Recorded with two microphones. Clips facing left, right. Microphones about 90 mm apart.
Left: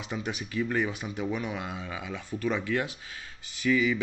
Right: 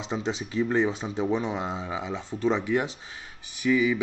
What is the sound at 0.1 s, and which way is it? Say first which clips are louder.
Speech: right 4 dB; 25° right (ahead or behind).